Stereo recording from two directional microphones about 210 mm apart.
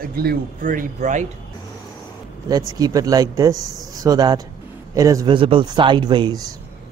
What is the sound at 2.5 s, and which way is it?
A man's voice, 15° right (ahead or behind).